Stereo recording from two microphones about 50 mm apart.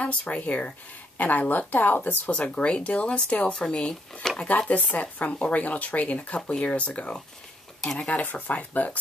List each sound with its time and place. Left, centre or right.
0.0 s a woman's voice: left
3.6 s speech: centre
4.5 s a woman's voice: left
5.2 s speech: left
7.8 s speech: centre
8.4 s a woman's voice: left